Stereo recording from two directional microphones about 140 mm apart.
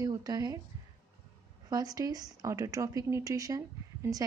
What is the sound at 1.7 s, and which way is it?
A woman's voice, 25° right (ahead or behind).